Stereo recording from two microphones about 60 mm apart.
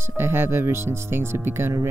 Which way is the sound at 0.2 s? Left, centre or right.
Right.